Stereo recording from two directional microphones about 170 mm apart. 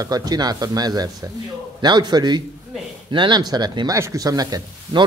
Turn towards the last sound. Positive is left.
turn(degrees=-25)  # may be behind; listen again after turning